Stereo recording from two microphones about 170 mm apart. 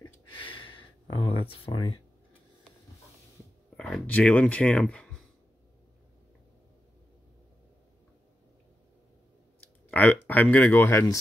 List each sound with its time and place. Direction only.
0.0 s a sound: 30° left (ahead or behind)
3.7 s speech: 5° left (ahead or behind)
9.8 s speech: 10° left (ahead or behind)